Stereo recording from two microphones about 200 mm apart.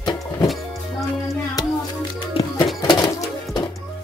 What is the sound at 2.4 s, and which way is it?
Music, 30° left (ahead or behind).